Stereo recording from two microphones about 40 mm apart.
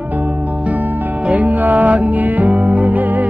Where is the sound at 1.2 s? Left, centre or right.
Right.